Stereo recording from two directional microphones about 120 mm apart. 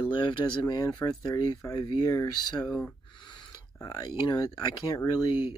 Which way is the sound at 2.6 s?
10° left (ahead or behind).